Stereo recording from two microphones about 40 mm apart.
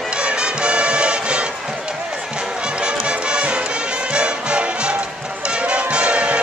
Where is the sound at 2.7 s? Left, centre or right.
Right.